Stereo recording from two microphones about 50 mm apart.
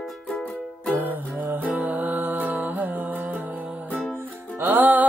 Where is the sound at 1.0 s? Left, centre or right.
Right.